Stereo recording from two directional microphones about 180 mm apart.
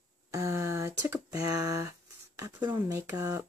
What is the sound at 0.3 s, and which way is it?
Speech, 15° right (ahead or behind).